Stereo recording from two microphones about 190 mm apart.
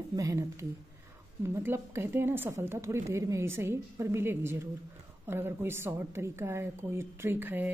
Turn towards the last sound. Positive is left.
turn(degrees=-10)  # may be behind; listen again after turning